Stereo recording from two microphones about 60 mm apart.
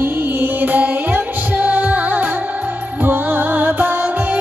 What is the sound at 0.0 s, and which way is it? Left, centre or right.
Music, right.